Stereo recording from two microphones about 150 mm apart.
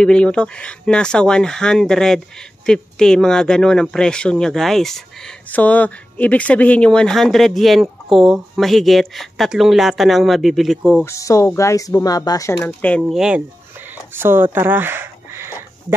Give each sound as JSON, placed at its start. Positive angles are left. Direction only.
{"t": 0.0, "sound": "speech", "side_deg": 5}
{"t": 11.1, "sound": "speech", "side_deg": 20}
{"t": 12.6, "sound": "speech", "side_deg": 10}
{"t": 13.0, "sound": "speech", "side_deg": -5}